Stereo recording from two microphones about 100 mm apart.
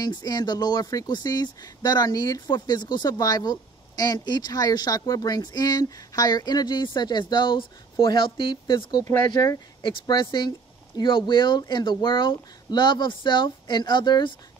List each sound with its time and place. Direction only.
0.0 s speech: 40° left (ahead or behind)
9.3 s speech: 40° left (ahead or behind)
9.8 s speech: 50° left (ahead or behind)